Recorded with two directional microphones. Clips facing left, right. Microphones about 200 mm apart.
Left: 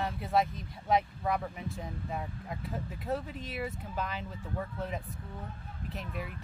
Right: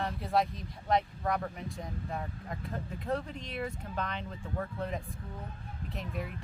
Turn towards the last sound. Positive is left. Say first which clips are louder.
# right 1 dB
turn(degrees=0)  # may be behind; listen again after turning